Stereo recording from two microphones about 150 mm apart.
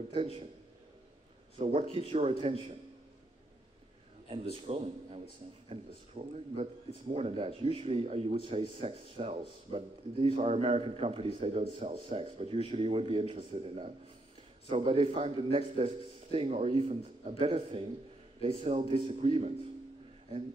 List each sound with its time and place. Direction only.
0.1 s speech: 40° right (ahead or behind)
1.6 s speech: 40° right (ahead or behind)
4.3 s speech: 40° right (ahead or behind)